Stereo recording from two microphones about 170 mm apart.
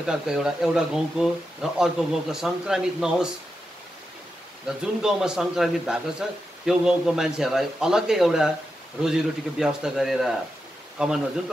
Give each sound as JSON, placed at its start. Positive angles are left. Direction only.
{"t": 0.0, "sound": "a man's voice", "side_deg": -5}
{"t": 4.6, "sound": "a man's voice", "side_deg": -5}